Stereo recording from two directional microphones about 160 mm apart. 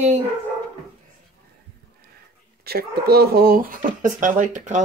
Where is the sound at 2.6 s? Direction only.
75° right (ahead or behind).